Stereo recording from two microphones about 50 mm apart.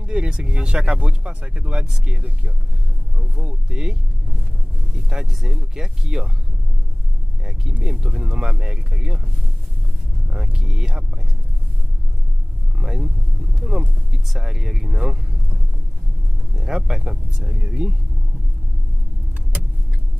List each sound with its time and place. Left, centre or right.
0.0 s speech: right
3.7 s speech: centre
7.8 s speech: centre
10.3 s speech: centre
12.7 s speech: centre
16.5 s speech: centre
17.6 s speech: right